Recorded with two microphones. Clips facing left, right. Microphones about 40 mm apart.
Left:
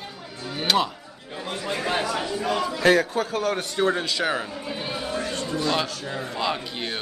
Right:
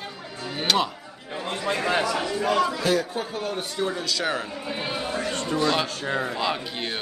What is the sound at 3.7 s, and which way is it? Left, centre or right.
Speech, left.